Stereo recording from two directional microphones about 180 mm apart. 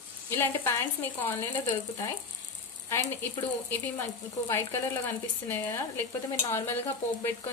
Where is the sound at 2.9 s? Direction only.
10° left (ahead or behind).